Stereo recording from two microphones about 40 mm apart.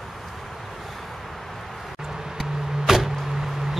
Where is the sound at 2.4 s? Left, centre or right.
Centre.